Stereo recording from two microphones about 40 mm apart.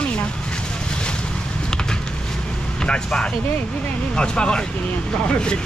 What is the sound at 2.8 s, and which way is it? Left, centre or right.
Speech, left.